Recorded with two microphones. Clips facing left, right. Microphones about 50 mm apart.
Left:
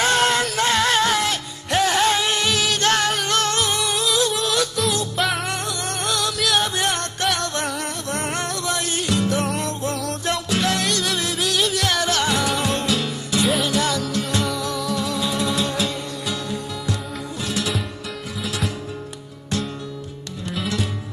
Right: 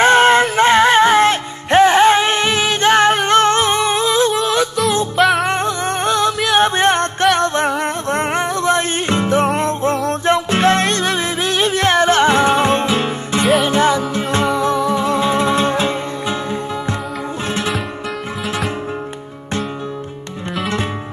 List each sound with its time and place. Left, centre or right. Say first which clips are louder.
0.0 s music: right 8 dB; right
5.1 s music: right 9 dB; centre
5.5 s music: right 8 dB; right